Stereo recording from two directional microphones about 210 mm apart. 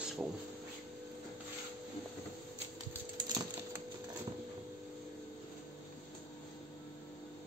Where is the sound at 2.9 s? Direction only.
15° right (ahead or behind).